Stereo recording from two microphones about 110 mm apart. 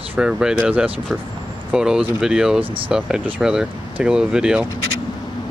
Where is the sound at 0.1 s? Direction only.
10° right (ahead or behind).